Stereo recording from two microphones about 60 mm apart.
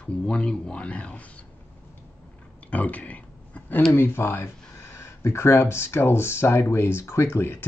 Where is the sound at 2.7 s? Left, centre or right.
Left.